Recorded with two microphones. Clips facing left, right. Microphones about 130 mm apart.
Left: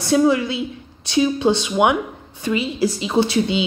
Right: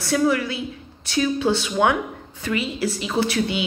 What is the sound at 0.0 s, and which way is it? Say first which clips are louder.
Speech: left 4 dB; 20° left (ahead or behind).